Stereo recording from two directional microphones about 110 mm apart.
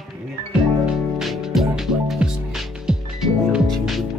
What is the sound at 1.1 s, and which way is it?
Music, centre (ahead or behind).